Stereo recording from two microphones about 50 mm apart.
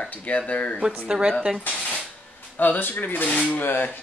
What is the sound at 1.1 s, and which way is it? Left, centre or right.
Speech, centre.